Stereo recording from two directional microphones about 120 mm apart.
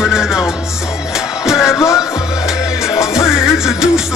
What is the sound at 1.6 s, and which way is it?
Music, 25° left (ahead or behind).